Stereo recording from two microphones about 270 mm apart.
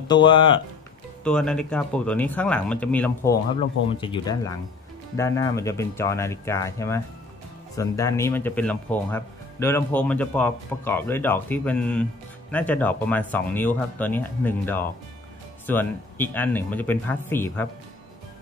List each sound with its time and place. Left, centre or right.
0.1 s speech: centre
1.2 s speech: centre
4.0 s speech: centre